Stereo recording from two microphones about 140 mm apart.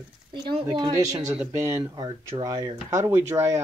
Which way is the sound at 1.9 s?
30° right (ahead or behind).